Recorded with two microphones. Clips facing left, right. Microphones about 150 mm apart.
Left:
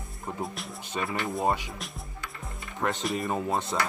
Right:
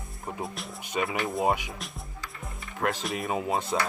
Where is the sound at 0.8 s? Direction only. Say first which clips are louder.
Right 2 dB; 15° right (ahead or behind).